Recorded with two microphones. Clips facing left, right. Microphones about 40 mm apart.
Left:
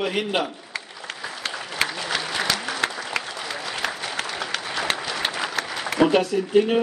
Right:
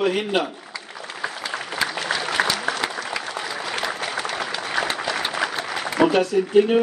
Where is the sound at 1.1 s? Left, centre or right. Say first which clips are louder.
Left 2 dB; left.